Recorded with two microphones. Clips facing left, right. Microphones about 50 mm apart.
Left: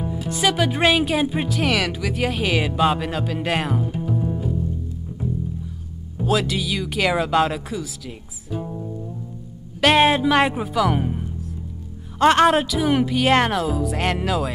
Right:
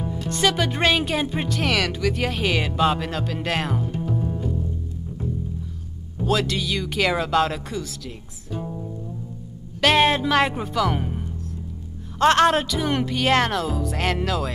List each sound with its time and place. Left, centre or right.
0.0 s speech: centre
6.1 s speech: centre
8.5 s music: centre
9.8 s speech: centre